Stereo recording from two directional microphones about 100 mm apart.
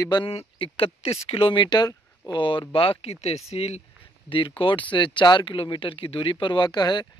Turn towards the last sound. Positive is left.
turn(degrees=45)  # may be behind; listen again after turning